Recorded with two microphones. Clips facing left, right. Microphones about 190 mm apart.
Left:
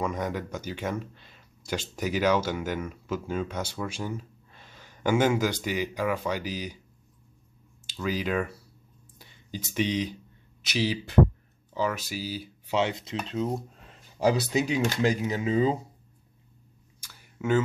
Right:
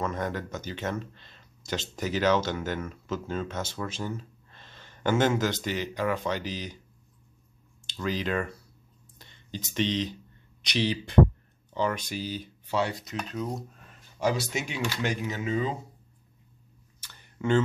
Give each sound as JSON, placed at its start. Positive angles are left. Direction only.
{"t": 0.0, "sound": "speech", "side_deg": 10}
{"t": 7.8, "sound": "speech", "side_deg": 5}
{"t": 12.7, "sound": "speech", "side_deg": 20}
{"t": 17.0, "sound": "a sound", "side_deg": 5}